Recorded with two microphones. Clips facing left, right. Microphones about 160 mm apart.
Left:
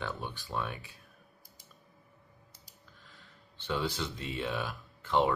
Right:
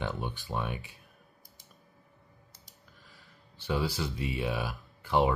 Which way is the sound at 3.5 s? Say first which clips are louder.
Right 2 dB; 10° right (ahead or behind).